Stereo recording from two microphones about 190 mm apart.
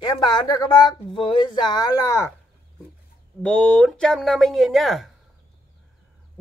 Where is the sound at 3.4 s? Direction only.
5° left (ahead or behind).